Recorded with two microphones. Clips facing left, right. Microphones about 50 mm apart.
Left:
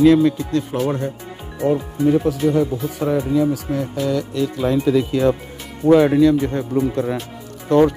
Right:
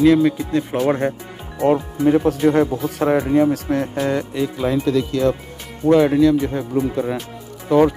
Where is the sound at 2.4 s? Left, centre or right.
Right.